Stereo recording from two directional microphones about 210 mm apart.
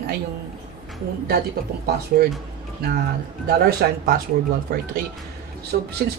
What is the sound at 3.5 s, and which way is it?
Speech, 45° right (ahead or behind).